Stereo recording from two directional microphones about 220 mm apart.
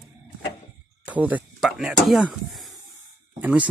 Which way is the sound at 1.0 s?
5° right (ahead or behind).